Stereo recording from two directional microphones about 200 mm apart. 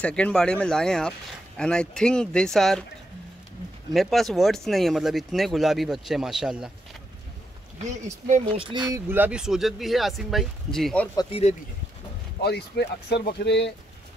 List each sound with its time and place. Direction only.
0.0 s speech: 5° left (ahead or behind)
3.9 s speech: centre (ahead or behind)
8.5 s speech: 25° right (ahead or behind)
8.9 s speech: 10° right (ahead or behind)
11.1 s speech: 30° left (ahead or behind)
12.4 s speech: 55° left (ahead or behind)